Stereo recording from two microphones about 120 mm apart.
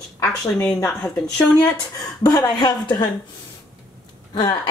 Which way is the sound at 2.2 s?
35° left (ahead or behind).